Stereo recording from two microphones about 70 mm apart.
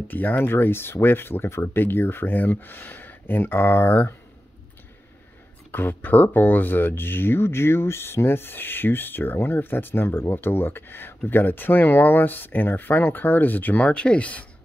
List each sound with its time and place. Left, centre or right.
0.1 s speech: left
5.7 s speech: left